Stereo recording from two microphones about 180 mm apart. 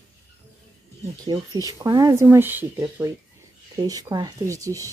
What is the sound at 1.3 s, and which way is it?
Speech, 20° right (ahead or behind).